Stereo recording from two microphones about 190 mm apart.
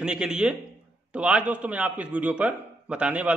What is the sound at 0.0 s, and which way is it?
A man's voice, 5° right (ahead or behind).